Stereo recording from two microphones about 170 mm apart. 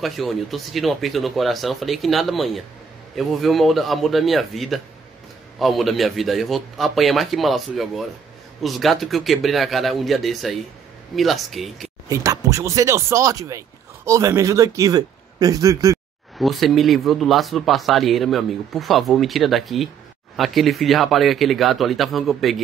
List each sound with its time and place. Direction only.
0.0 s speech: centre (ahead or behind)
12.1 s speech: 20° right (ahead or behind)
16.3 s speech: centre (ahead or behind)